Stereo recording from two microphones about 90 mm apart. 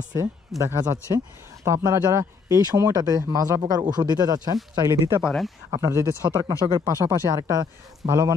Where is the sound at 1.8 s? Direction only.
35° right (ahead or behind).